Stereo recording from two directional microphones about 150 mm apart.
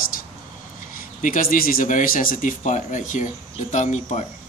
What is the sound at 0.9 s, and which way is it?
Speech, 65° left (ahead or behind).